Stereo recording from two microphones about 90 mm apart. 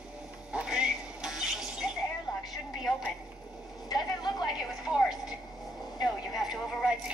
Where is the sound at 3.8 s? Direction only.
50° left (ahead or behind).